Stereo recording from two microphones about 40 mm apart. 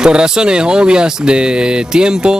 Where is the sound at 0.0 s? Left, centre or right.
Right.